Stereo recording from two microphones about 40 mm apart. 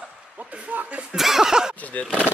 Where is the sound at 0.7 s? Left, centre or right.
Right.